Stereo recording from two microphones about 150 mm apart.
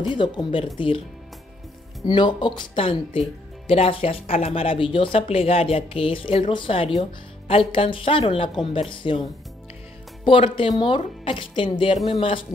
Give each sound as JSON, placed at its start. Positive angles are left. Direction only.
{"t": 0.0, "sound": "speech", "side_deg": 30}
{"t": 2.0, "sound": "speech", "side_deg": 30}
{"t": 10.2, "sound": "speech", "side_deg": 35}